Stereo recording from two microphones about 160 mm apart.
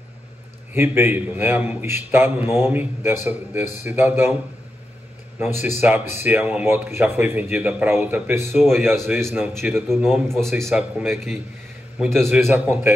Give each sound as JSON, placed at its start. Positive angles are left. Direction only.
{"t": 0.7, "sound": "a man's voice", "side_deg": -15}
{"t": 5.4, "sound": "a man's voice", "side_deg": -15}
{"t": 8.8, "sound": "speech", "side_deg": 0}
{"t": 9.1, "sound": "a man's voice", "side_deg": -10}
{"t": 9.8, "sound": "speech", "side_deg": 0}
{"t": 12.4, "sound": "a man's voice", "side_deg": -15}